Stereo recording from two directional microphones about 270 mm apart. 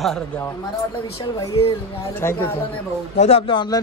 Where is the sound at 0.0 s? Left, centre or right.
Centre.